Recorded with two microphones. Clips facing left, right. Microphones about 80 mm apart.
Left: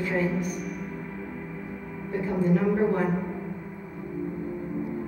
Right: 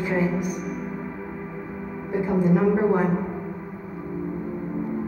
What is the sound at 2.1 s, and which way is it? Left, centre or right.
A woman's voice, centre.